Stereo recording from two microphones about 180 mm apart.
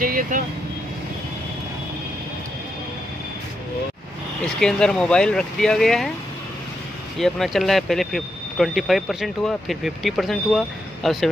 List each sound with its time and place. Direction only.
0.0 s speech: 50° right (ahead or behind)
4.6 s speech: 5° left (ahead or behind)
7.2 s speech: centre (ahead or behind)